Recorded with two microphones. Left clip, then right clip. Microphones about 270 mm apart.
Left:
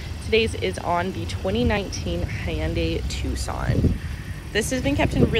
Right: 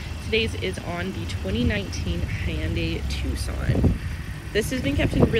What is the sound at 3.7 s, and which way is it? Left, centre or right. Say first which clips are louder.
Speech: even; centre.